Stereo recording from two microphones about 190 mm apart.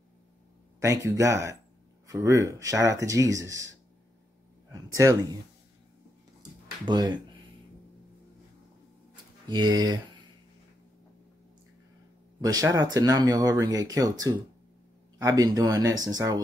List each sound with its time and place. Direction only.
0.7 s speech: 15° right (ahead or behind)
4.9 s speech: 15° right (ahead or behind)
6.9 s speech: 25° right (ahead or behind)
9.5 s speech: 20° right (ahead or behind)
12.4 s speech: 20° right (ahead or behind)